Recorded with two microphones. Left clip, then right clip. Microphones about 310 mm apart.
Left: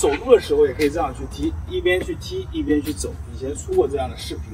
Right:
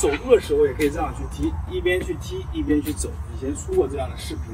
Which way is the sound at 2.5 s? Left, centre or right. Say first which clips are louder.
Left 1 dB; centre.